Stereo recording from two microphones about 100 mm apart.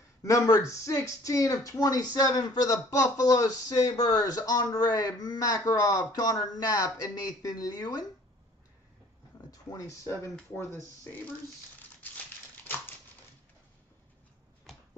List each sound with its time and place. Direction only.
0.2 s speech: 30° left (ahead or behind)
9.5 s a sound: 35° left (ahead or behind)
12.0 s crumpling: 20° left (ahead or behind)